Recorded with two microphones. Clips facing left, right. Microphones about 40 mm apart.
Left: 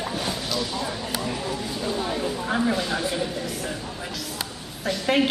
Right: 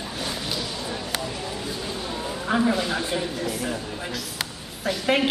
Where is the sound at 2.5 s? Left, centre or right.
Centre.